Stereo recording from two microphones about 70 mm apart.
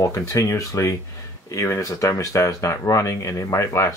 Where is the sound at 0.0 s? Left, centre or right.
Left.